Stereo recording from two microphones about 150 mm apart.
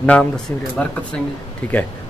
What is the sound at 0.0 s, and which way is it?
Speech, 10° left (ahead or behind).